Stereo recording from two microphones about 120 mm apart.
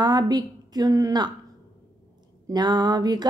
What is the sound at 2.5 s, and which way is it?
Speech, 35° right (ahead or behind).